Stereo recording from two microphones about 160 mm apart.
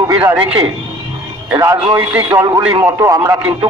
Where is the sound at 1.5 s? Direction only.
20° right (ahead or behind).